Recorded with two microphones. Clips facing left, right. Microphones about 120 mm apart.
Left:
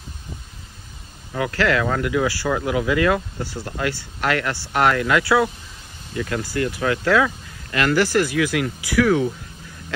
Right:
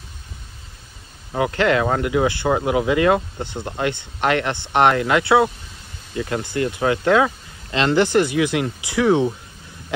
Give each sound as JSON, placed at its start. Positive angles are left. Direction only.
{"t": 1.3, "sound": "speech", "side_deg": -20}